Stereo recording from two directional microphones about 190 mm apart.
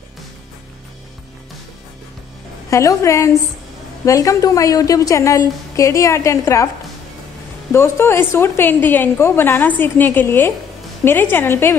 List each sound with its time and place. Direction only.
2.7 s a woman's voice: 15° left (ahead or behind)
7.7 s a woman's voice: 15° left (ahead or behind)